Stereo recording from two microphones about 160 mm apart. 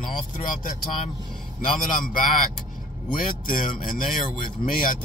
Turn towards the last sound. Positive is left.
turn(degrees=60)  # may be behind; listen again after turning